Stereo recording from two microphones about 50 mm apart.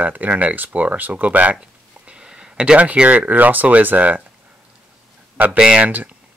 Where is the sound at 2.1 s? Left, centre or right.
Centre; by 4.2 s right.